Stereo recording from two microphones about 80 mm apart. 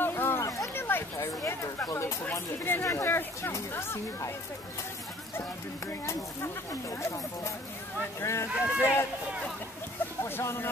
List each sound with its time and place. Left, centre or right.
0.0 s a sound: left
2.6 s speech: left
5.3 s speech: left
8.5 s speech: centre
10.2 s speech: left